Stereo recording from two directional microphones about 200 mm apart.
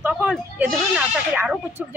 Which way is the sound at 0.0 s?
5° right (ahead or behind).